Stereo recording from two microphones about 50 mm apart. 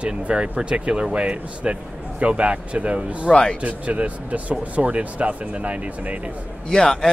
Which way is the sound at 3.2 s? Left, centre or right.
Centre.